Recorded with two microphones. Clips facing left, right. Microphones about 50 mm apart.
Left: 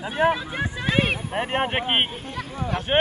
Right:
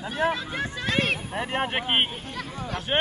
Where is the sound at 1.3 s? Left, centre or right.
Left.